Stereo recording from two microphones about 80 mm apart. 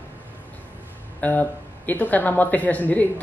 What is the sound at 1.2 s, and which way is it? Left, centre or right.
A man's voice, left.